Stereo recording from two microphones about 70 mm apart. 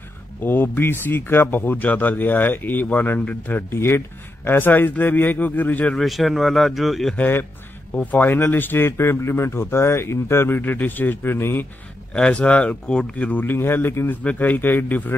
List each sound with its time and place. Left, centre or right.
0.4 s speech: left
5.9 s speech: centre
7.2 s speech: left
12.1 s speech: centre
13.3 s speech: left